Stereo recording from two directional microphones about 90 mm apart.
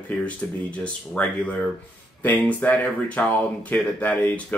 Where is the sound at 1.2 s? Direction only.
10° left (ahead or behind).